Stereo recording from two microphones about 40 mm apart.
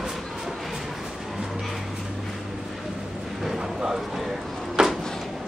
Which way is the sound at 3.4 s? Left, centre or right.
Centre.